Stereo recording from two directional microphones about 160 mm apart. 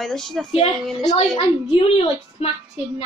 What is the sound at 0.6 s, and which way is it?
Speech, 35° left (ahead or behind).